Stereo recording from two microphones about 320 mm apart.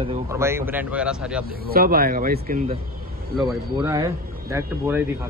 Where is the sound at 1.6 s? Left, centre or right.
Right.